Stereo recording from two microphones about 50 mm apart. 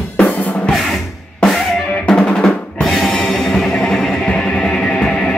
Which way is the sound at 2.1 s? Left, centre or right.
Centre.